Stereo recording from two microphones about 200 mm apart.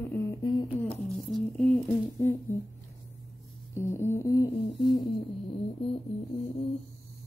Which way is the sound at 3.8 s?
15° left (ahead or behind).